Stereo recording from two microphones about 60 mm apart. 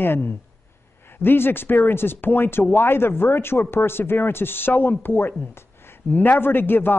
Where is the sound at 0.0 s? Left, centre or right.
Left.